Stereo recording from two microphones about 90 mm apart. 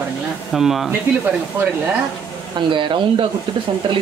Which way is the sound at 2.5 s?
65° right (ahead or behind).